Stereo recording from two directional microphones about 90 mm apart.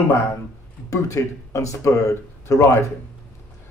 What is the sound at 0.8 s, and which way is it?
Speech, 35° left (ahead or behind).